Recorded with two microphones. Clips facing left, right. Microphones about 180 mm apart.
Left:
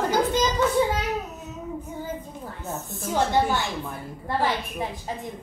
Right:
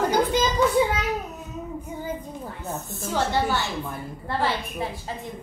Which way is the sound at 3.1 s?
15° left (ahead or behind).